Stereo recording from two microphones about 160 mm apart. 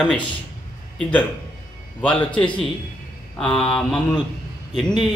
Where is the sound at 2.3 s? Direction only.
30° left (ahead or behind).